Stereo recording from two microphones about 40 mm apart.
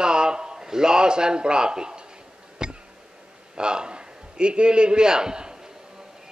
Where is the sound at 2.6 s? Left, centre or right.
Right.